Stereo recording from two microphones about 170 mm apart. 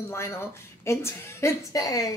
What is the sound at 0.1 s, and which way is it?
A woman's voice, 15° left (ahead or behind).